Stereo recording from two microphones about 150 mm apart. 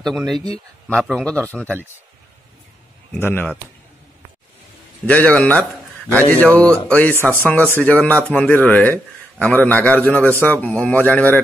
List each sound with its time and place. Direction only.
0.8 s speech: centre (ahead or behind)
3.1 s speech: 15° left (ahead or behind)
5.0 s speech: 10° left (ahead or behind)
7.2 s speech: 15° right (ahead or behind)
7.4 s speech: 10° left (ahead or behind)